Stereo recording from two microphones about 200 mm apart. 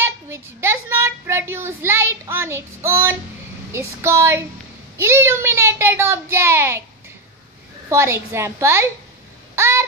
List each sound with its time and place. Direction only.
0.0 s a woman's voice: 10° right (ahead or behind)
7.9 s a child's voice: 15° right (ahead or behind)
9.6 s a sound: 15° right (ahead or behind)